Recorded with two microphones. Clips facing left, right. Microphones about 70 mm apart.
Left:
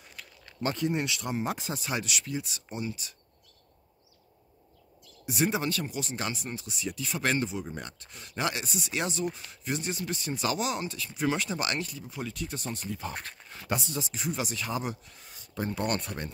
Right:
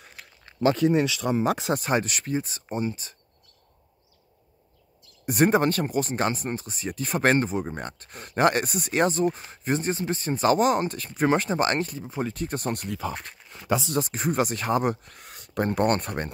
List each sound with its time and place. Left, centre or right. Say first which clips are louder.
0.7 s speech: right 8 dB; right
1.7 s speech: right 8 dB; right
5.2 s speech: right 8 dB; right
13.1 s speech: right 3 dB; centre
13.9 s speech: right 8 dB; right